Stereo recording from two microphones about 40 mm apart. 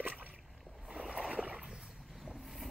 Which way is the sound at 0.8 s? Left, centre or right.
Centre.